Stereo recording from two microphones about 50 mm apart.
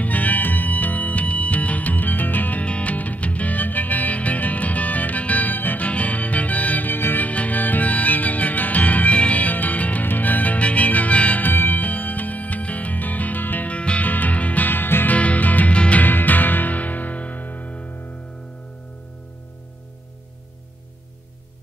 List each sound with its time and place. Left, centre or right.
0.0 s music: left
2.6 s music: left
7.2 s music: left
11.4 s music: left
15.1 s music: left
16.0 s music: left